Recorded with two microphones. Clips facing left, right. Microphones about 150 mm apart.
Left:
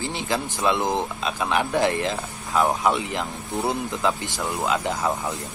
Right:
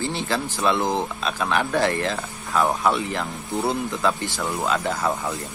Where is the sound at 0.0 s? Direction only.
15° left (ahead or behind).